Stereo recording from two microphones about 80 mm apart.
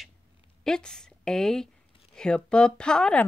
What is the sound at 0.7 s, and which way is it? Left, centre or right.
A woman's voice, centre.